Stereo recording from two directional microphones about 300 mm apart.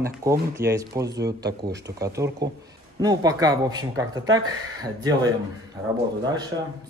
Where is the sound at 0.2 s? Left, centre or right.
Centre.